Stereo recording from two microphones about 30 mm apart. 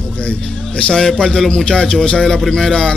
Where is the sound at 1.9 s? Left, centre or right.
Centre.